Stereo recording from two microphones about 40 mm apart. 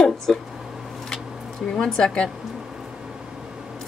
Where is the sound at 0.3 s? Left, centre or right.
Centre.